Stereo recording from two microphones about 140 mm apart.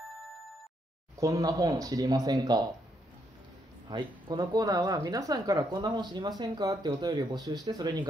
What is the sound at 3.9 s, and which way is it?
Speech, 30° right (ahead or behind).